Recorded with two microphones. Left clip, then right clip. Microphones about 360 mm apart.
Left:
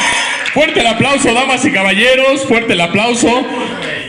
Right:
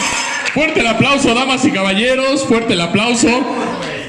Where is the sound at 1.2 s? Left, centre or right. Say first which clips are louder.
Left 2 dB; centre.